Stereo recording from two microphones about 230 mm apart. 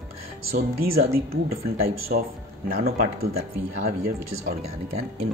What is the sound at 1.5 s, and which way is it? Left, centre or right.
Speech, right.